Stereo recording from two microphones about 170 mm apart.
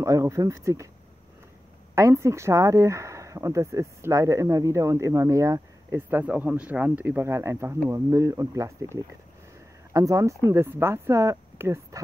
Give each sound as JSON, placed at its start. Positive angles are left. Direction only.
{"t": 0.0, "sound": "speech", "side_deg": -20}
{"t": 2.0, "sound": "speech", "side_deg": -15}